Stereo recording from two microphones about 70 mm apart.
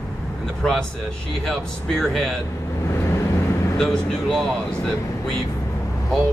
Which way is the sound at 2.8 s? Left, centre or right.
Left.